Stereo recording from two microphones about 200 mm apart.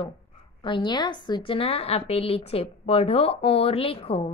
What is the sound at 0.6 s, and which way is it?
A woman's voice, 25° left (ahead or behind).